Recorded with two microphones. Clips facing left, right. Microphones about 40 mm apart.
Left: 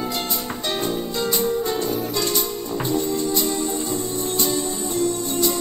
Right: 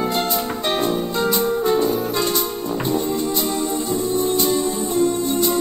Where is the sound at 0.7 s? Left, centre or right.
Centre.